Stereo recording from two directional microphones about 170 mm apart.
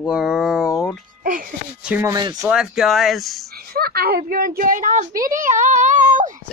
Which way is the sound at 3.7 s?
65° right (ahead or behind).